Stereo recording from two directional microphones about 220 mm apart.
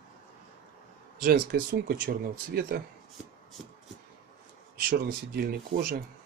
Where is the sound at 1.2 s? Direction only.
45° right (ahead or behind).